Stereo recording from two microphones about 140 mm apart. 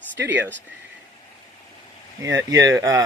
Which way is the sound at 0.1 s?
10° right (ahead or behind).